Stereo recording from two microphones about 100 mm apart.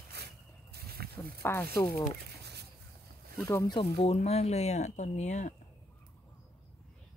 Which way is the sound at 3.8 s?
85° left.